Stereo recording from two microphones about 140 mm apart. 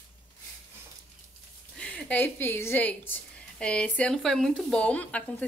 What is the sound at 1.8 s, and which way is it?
A woman's voice, 10° left (ahead or behind).